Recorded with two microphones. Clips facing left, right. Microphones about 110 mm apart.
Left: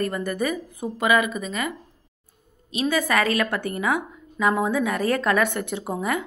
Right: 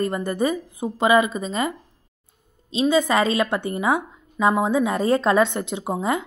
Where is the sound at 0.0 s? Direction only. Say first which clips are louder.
Right 3 dB; 25° right (ahead or behind).